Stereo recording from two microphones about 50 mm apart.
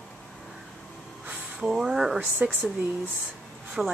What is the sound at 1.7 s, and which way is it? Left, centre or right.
Speech, centre.